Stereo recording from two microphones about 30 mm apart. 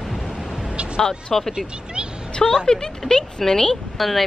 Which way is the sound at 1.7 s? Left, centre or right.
Right.